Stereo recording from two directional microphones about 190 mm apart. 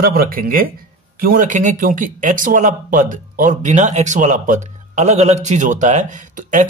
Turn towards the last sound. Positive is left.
turn(degrees=-40)  # may be behind; listen again after turning